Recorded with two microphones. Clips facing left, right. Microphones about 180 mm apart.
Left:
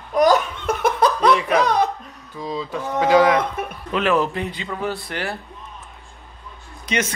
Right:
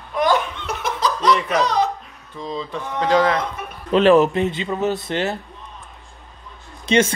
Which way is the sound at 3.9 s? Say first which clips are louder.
Right 7 dB; 30° right (ahead or behind).